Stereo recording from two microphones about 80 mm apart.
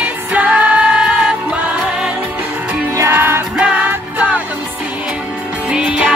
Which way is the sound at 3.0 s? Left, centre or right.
Right.